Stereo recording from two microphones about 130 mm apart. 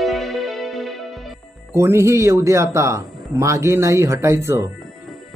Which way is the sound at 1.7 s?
20° right (ahead or behind).